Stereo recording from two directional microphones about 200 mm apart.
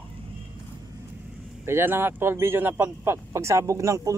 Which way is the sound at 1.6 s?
10° right (ahead or behind).